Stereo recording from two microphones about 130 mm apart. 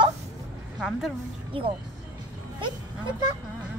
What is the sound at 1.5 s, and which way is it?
Speech, 45° right (ahead or behind).